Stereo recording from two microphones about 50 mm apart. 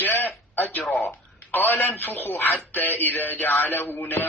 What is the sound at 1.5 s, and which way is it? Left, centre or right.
A man's voice, left.